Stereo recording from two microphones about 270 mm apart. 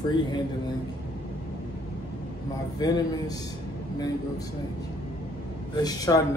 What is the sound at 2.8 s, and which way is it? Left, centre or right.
Speech, centre.